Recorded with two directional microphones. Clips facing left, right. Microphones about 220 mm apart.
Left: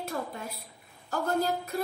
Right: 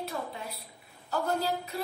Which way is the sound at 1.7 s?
50° left (ahead or behind).